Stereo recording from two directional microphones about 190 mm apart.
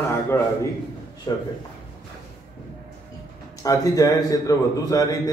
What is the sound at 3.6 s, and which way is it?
A man's voice, 20° left (ahead or behind).